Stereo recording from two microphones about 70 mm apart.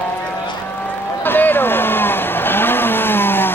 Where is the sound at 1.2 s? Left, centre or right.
Left.